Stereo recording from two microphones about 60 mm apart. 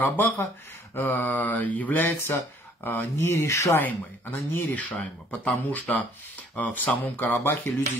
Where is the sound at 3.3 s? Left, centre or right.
Left.